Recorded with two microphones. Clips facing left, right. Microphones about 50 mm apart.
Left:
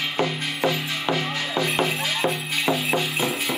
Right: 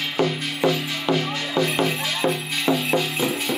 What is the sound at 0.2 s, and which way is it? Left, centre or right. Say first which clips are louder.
Music: right 3 dB; centre.